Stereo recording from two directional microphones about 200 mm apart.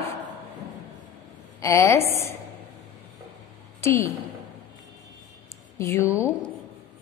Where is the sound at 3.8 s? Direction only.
15° left (ahead or behind).